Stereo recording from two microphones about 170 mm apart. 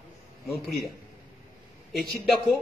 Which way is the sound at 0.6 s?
60° left (ahead or behind).